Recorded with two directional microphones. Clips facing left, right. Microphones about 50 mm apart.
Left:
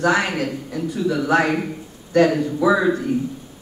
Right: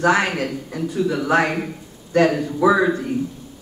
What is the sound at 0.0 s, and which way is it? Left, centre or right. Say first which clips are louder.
A man's voice: right 1 dB; right.